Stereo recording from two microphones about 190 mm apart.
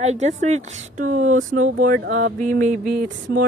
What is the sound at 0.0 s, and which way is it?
Speech, 35° right (ahead or behind).